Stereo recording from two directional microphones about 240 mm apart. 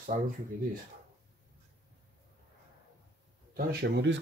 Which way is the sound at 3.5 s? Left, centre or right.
Right.